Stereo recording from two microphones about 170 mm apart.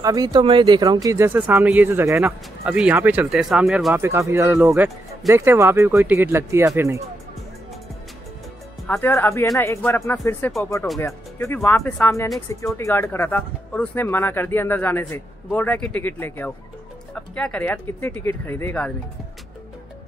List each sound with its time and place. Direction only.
0.0 s speech: 20° right (ahead or behind)
8.8 s speech: 10° left (ahead or behind)